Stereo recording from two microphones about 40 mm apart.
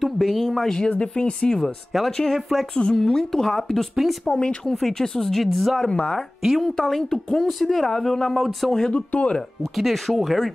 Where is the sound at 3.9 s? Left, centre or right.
Centre.